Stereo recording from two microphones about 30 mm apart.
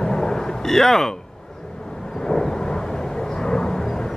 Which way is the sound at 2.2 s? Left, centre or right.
Centre.